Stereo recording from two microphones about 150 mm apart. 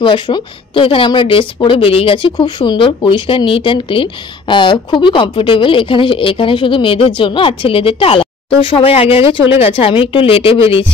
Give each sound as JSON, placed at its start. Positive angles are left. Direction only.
{"t": 0.0, "sound": "a woman's voice", "side_deg": 30}